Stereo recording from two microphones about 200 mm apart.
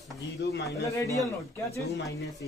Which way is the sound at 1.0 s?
15° left (ahead or behind).